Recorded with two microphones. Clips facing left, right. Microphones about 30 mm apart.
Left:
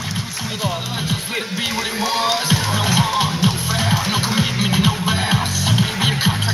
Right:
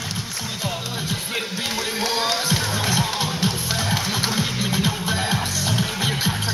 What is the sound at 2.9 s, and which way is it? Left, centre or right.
Music, left.